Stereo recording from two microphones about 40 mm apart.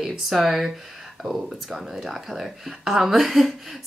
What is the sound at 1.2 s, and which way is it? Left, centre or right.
Speech, centre.